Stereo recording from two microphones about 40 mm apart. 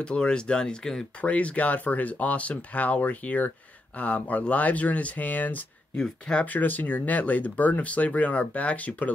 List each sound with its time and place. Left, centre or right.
0.0 s speech: left
1.2 s speech: left
5.9 s speech: left
6.4 s speech: left